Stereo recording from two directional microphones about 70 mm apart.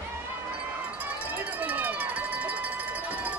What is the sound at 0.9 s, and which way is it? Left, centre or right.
Run, right.